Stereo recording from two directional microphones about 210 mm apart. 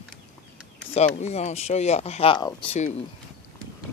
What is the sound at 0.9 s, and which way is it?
Speech, 30° left (ahead or behind).